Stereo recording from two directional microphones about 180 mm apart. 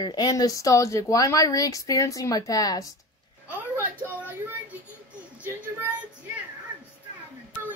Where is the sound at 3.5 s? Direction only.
10° right (ahead or behind).